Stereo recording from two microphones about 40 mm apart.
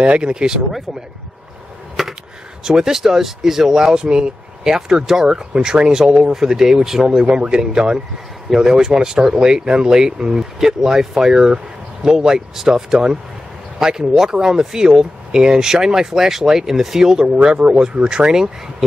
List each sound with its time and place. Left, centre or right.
0.0 s speech: right
2.0 s a sound: centre
2.6 s speech: centre
7.1 s speech: right